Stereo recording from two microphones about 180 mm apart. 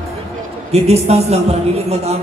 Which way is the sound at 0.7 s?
35° right (ahead or behind).